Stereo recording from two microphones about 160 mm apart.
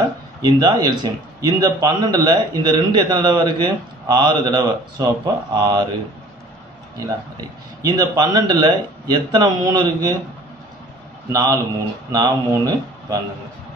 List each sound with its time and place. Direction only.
0.4 s a man's voice: 25° right (ahead or behind)
7.3 s a man's voice: 25° right (ahead or behind)
11.2 s a man's voice: 20° right (ahead or behind)